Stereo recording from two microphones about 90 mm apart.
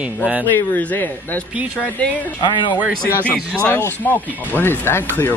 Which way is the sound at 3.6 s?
20° left (ahead or behind).